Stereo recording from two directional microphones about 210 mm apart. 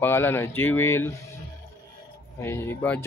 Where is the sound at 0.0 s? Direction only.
10° left (ahead or behind).